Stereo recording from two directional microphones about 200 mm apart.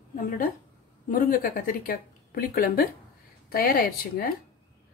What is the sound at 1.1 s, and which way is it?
Speech, 45° left (ahead or behind).